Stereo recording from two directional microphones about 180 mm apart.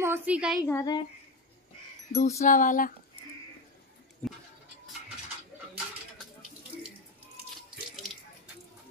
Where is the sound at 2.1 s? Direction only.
40° left (ahead or behind).